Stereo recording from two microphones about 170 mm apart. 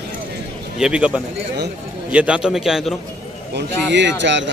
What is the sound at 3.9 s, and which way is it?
Speech, 90° right.